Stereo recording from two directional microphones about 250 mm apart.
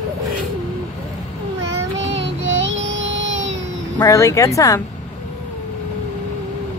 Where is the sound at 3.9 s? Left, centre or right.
Centre.